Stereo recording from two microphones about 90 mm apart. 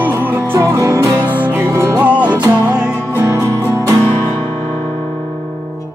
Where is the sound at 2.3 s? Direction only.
15° right (ahead or behind).